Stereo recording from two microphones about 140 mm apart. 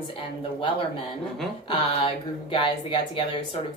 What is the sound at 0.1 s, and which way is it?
Speech, 40° left (ahead or behind).